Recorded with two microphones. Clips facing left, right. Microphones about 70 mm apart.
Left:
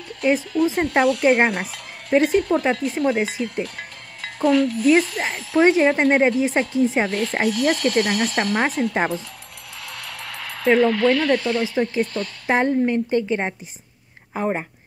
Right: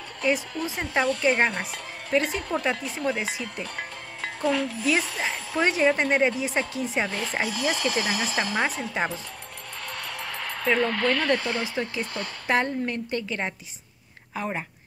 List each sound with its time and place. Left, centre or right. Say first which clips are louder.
0.5 s speech: left 11 dB; centre
10.0 s a sound: even; centre
11.8 s speech: left 9 dB; left
12.4 s a woman's voice: left 6 dB; left